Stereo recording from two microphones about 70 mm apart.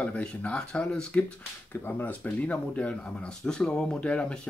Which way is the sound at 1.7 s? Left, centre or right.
Left.